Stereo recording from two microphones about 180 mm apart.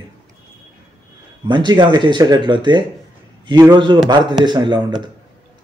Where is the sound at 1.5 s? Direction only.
25° right (ahead or behind).